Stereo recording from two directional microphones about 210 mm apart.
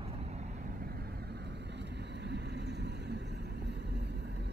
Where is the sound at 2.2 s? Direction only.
50° right (ahead or behind).